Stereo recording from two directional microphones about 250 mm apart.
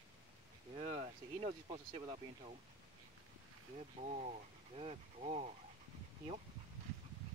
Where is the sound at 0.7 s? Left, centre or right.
Right.